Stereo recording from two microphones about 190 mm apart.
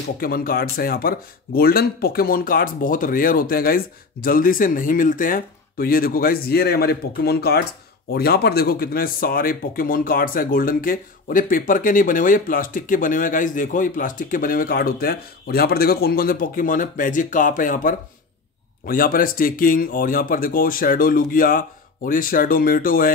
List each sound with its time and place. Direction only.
0.2 s speech: 50° left (ahead or behind)